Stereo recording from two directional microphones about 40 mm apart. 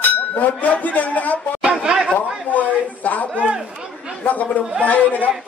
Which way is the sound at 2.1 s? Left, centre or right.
Left.